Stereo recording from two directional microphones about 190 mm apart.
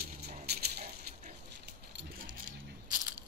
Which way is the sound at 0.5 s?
55° right (ahead or behind).